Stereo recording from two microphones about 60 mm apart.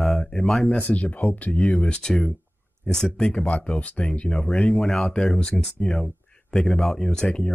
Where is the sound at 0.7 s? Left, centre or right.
Left.